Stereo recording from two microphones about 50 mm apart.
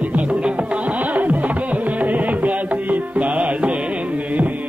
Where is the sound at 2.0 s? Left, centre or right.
Right.